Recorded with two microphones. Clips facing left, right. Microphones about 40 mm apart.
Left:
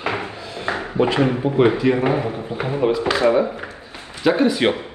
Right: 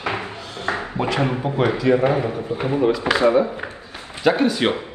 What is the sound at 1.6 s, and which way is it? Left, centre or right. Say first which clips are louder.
A man's voice: even; left.